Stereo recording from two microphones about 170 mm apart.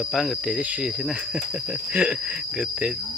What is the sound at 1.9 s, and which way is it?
Cricket, 5° right (ahead or behind).